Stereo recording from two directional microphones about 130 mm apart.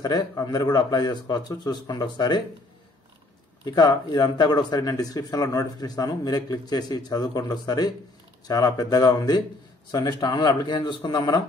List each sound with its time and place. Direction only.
0.0 s speech: 30° left (ahead or behind)
3.6 s speech: 35° left (ahead or behind)